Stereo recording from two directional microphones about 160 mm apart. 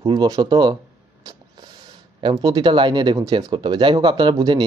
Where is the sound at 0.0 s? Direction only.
30° right (ahead or behind).